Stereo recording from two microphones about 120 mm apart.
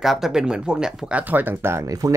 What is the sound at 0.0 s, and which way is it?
Speech, centre (ahead or behind).